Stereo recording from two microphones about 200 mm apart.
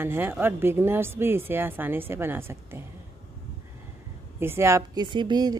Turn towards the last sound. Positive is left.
turn(degrees=-20)  # may be behind; listen again after turning